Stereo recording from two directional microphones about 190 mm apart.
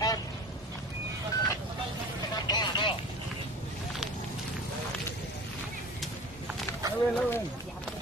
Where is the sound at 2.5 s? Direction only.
25° left (ahead or behind).